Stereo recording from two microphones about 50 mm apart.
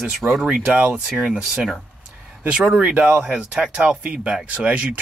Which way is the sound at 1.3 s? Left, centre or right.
Centre.